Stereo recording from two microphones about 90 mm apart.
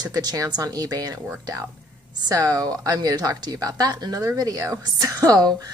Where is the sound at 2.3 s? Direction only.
40° right (ahead or behind).